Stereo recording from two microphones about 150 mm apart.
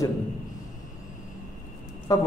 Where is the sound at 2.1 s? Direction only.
25° left (ahead or behind).